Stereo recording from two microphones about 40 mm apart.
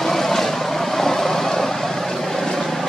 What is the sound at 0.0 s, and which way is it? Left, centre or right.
Vehicle, centre.